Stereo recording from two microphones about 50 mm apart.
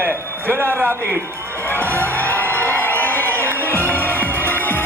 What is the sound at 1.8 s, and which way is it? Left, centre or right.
Music, right.